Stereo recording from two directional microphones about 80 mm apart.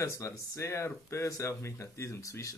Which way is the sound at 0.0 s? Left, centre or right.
Left.